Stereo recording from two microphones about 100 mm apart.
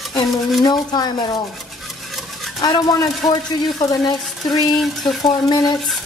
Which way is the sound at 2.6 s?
40° left (ahead or behind).